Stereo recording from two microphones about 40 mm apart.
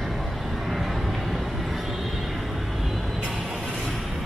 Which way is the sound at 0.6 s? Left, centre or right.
Centre.